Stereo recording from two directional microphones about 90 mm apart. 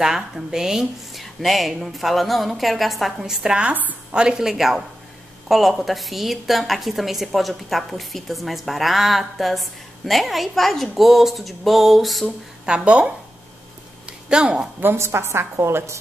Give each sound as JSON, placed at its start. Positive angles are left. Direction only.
{"t": 0.0, "sound": "a woman's voice", "side_deg": -5}
{"t": 12.6, "sound": "speech", "side_deg": -10}
{"t": 14.3, "sound": "speech", "side_deg": -10}
{"t": 14.8, "sound": "a woman's voice", "side_deg": -25}